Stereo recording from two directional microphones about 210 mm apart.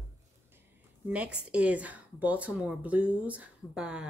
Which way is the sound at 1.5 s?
5° right (ahead or behind).